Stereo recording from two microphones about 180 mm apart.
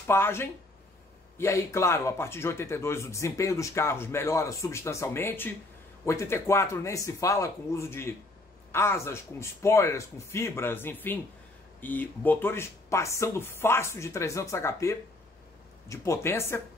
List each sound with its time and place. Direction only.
0.0 s a man's voice: 15° left (ahead or behind)